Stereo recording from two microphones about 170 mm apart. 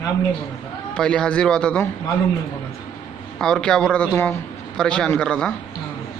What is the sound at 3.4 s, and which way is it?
A man's voice, 5° left (ahead or behind).